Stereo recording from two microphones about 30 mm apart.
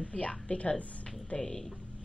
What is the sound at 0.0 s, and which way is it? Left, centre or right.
A woman's voice, left.